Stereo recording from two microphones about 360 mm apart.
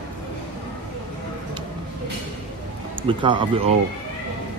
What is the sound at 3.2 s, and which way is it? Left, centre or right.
Speech, centre.